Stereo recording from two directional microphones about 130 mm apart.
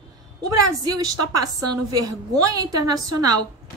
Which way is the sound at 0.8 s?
30° right (ahead or behind).